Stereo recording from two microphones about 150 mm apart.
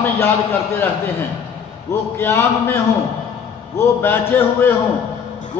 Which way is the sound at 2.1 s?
15° left (ahead or behind).